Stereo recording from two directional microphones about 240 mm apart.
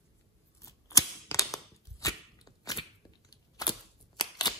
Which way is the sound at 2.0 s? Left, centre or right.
Centre.